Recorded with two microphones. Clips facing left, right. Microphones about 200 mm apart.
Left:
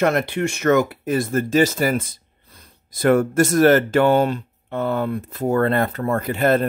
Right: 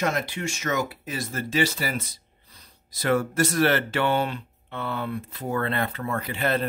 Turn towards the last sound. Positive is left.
turn(degrees=45)  # may be behind; listen again after turning